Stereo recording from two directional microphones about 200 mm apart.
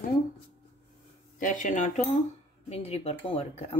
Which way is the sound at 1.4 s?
40° left (ahead or behind).